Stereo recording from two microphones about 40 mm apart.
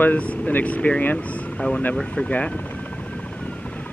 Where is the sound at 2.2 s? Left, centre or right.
Left.